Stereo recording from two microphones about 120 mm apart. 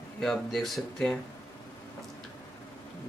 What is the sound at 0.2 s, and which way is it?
Speech, 5° left (ahead or behind).